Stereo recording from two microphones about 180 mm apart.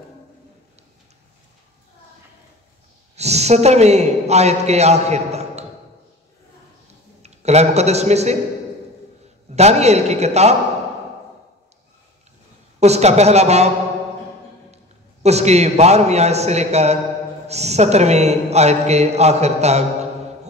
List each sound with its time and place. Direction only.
3.2 s a man's voice: 35° right (ahead or behind)
7.2 s a man's voice: 35° right (ahead or behind)
9.6 s a man's voice: 35° right (ahead or behind)
12.8 s a man's voice: 35° right (ahead or behind)
15.2 s a man's voice: 35° right (ahead or behind)